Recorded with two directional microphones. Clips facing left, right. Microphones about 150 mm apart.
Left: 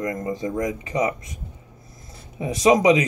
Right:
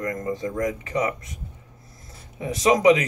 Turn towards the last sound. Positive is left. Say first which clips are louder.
# left 1 dB
turn(degrees=15)  # may be behind; listen again after turning